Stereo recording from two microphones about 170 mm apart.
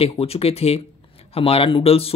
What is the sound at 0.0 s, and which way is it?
Speech, 35° left (ahead or behind).